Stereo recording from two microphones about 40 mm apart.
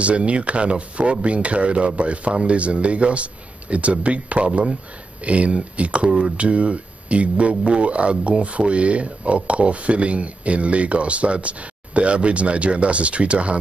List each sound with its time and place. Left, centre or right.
0.0 s speech: right